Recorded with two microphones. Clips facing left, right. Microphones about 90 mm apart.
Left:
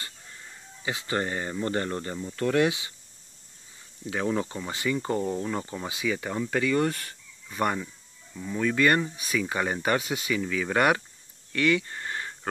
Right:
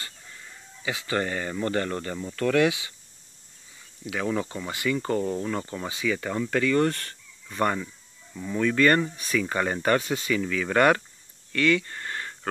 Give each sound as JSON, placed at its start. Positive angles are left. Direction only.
{"t": 0.8, "sound": "speech", "side_deg": 30}
{"t": 4.0, "sound": "speech", "side_deg": 30}